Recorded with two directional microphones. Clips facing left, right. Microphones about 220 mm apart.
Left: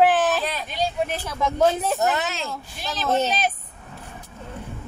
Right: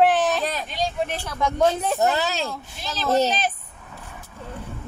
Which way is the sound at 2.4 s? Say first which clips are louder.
Right 2 dB; centre (ahead or behind).